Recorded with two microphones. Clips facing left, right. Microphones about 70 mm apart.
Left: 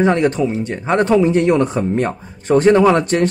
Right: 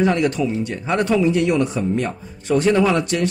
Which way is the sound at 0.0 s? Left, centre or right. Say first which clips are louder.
Left 3 dB; left.